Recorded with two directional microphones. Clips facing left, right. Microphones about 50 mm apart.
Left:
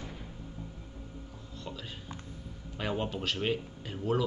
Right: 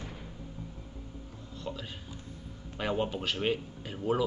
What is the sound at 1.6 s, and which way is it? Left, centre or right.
Speech, centre.